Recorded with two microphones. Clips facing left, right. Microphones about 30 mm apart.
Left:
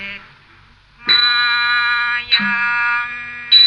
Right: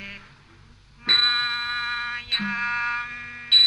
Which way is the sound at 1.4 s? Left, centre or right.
Left.